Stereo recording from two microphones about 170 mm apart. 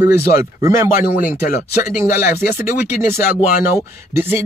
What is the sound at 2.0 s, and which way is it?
Speech, 15° right (ahead or behind).